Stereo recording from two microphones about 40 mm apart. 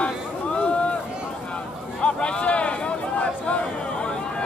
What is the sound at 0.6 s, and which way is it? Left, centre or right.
Run, left.